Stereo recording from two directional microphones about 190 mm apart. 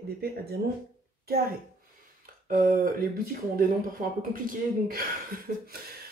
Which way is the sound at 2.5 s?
50° right (ahead or behind).